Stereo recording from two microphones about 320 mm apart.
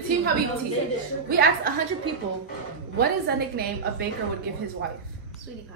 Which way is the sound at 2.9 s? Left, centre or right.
Right.